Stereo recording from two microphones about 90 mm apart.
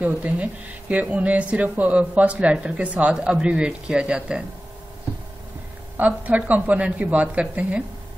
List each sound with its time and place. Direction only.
0.0 s speech: 15° right (ahead or behind)
5.9 s speech: 15° right (ahead or behind)